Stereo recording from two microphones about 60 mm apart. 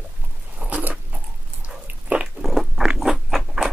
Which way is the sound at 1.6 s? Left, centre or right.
Right.